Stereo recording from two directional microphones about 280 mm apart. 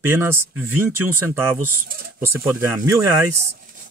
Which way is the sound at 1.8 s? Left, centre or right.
Right.